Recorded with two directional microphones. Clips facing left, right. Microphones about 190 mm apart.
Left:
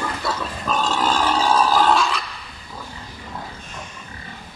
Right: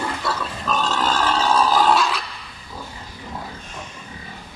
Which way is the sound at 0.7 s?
10° left (ahead or behind).